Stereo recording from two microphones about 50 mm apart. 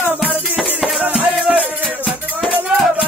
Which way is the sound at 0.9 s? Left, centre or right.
Right.